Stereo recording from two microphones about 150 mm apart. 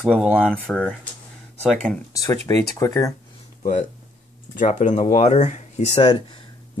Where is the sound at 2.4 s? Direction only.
20° left (ahead or behind).